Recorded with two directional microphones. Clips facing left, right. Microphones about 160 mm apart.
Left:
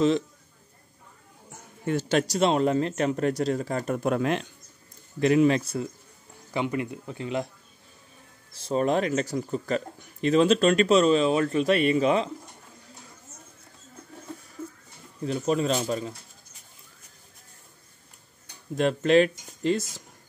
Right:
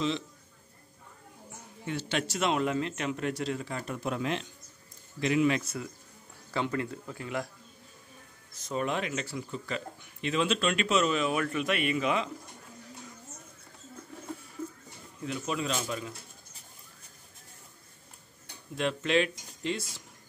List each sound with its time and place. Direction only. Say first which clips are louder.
1.9 s speech: left 8 dB; 45° left (ahead or behind)
5.2 s speech: left 6 dB; 40° left (ahead or behind)
6.5 s speech: left 3 dB; 15° left (ahead or behind)
8.5 s speech: left 7 dB; 35° left (ahead or behind)
15.2 s speech: left 8 dB; 35° left (ahead or behind)
18.8 s speech: left 7 dB; 40° left (ahead or behind)